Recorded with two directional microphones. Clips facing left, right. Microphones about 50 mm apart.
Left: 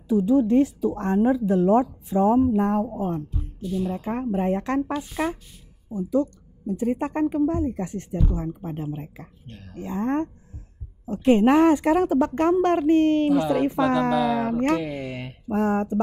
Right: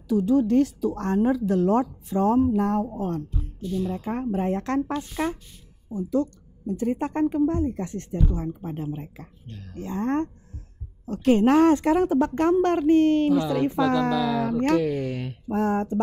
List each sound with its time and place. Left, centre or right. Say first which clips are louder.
0.1 s a woman's voice: left 1 dB; left